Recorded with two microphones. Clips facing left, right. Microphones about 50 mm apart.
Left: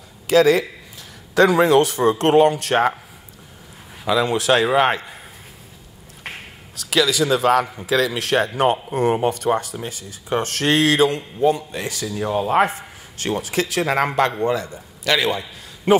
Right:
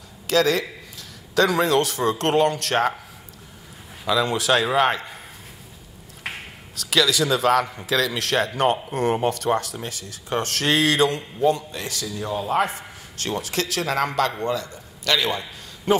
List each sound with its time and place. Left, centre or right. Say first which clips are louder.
0.3 s a man's voice: left 5 dB; centre
4.0 s speech: left 3 dB; centre
6.2 s speech: right 1 dB; centre
11.7 s speech: left 4 dB; centre
12.1 s speech: left 5 dB; left
13.2 s a man's voice: left 4 dB; centre